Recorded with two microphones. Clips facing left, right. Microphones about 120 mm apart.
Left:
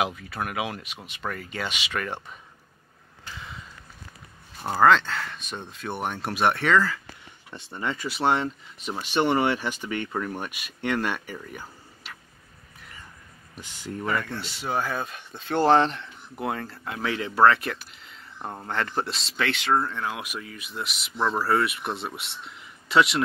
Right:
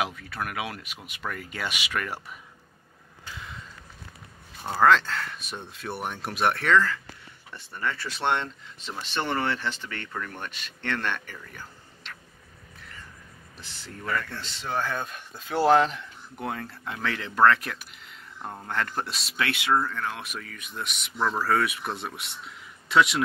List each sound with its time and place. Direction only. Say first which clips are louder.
0.3 s speech: left 2 dB; 5° left (ahead or behind)
3.3 s a sound: left 1 dB; centre (ahead or behind)
4.6 s speech: left 1 dB; 5° left (ahead or behind)
7.5 s speech: left 1 dB; 20° left (ahead or behind)
8.1 s speech: left 5 dB; 5° left (ahead or behind)
11.5 s a sound: left 4 dB; 10° left (ahead or behind)
13.6 s speech: left 8 dB; 15° left (ahead or behind); by 19.7 s 10° right (ahead or behind)
20.0 s speech: left 2 dB; 15° left (ahead or behind)